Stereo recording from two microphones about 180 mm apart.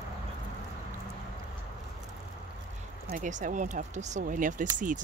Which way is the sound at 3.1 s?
45° right (ahead or behind).